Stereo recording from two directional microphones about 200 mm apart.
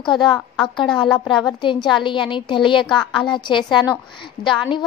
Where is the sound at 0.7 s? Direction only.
25° left (ahead or behind).